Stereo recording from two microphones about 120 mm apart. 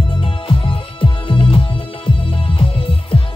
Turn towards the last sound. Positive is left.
turn(degrees=50)  # may be behind; listen again after turning